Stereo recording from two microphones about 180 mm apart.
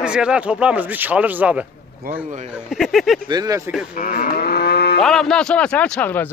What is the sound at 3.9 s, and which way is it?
Moo, 55° left (ahead or behind).